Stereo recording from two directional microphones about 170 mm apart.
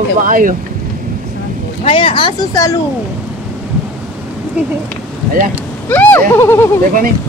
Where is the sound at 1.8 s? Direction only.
30° left (ahead or behind).